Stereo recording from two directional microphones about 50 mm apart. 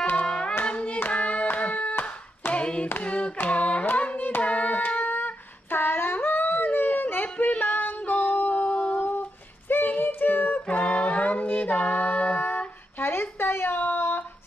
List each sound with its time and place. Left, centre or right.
0.1 s hands: left
2.5 s clapping: left
3.0 s hands: left
3.4 s carnatic music: left
4.4 s a sound: left
6.1 s yodeling: left
9.7 s a sound: left
10.8 s music: left
13.0 s a sound: left